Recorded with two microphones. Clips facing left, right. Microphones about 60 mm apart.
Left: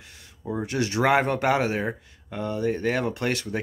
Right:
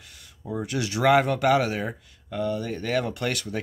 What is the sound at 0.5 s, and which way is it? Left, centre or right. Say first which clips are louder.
Speech: left 2 dB; left.